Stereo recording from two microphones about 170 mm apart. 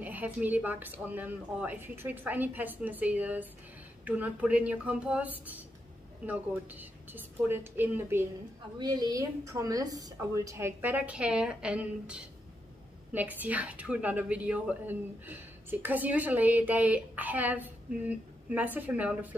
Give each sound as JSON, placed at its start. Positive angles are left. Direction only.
{"t": 0.0, "sound": "a woman's voice", "side_deg": -10}
{"t": 8.7, "sound": "a woman's voice", "side_deg": -25}